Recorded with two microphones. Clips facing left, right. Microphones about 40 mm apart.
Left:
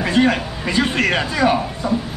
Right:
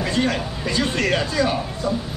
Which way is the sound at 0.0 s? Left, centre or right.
Left.